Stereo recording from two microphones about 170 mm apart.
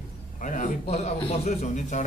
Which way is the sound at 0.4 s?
50° left (ahead or behind).